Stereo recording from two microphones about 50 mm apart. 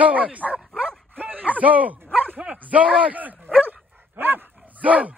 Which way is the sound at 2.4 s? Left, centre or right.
Right.